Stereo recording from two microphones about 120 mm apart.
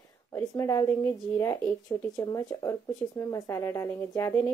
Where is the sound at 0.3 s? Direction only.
25° left (ahead or behind).